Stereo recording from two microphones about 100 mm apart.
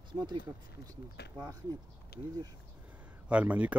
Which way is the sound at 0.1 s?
45° right (ahead or behind).